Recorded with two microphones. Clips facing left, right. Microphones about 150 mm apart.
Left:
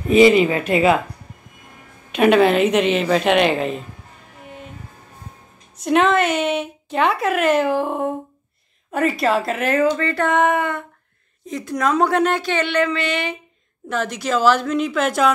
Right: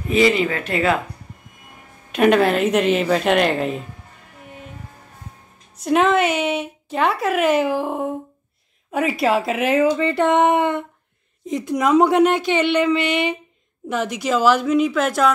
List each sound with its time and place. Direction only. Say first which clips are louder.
0.1 s speech: left 5 dB; 20° left (ahead or behind)
2.1 s a woman's voice: left 1 dB; centre (ahead or behind)
5.8 s a woman's voice: even; 5° right (ahead or behind)